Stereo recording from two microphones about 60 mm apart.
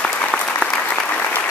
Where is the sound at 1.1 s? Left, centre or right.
Left.